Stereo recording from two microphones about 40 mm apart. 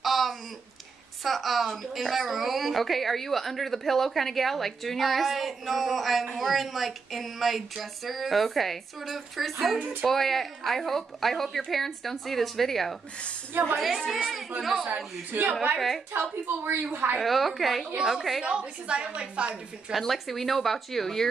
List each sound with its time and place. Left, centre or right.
0.0 s a sound: centre
1.2 s a woman's voice: centre
15.3 s a woman's voice: right
16.1 s speech: right
16.9 s a woman's voice: right
17.2 s a woman's voice: centre
18.4 s a woman's voice: right
19.9 s a woman's voice: centre